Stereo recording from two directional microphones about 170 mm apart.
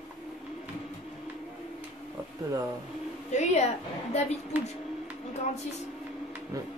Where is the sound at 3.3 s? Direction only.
45° left (ahead or behind).